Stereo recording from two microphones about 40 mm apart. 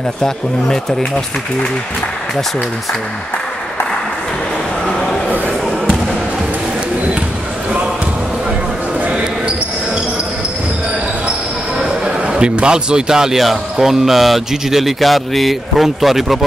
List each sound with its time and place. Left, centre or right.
0.2 s speech: centre
12.3 s a man's voice: right; by 16.3 s centre